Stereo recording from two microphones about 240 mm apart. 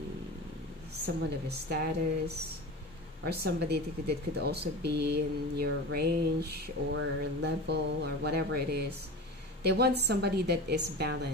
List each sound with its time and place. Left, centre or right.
1.0 s speech: right